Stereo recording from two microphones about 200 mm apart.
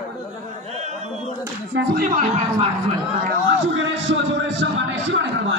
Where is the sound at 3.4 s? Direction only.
70° right (ahead or behind).